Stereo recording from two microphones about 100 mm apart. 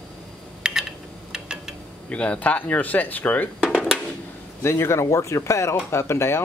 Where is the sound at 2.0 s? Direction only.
10° left (ahead or behind).